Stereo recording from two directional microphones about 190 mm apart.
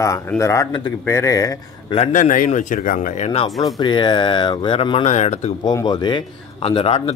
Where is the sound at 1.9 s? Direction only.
35° left (ahead or behind).